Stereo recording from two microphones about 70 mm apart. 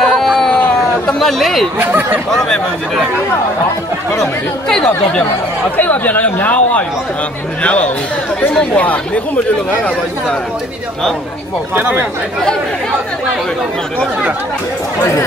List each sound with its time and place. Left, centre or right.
0.0 s a sound: centre
1.2 s speech: centre
1.8 s speech: right
2.3 s speech: centre
4.2 s speech: centre
5.8 s speech: left
11.7 s speech: right